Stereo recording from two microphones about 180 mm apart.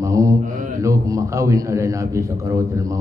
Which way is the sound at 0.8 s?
15° right (ahead or behind).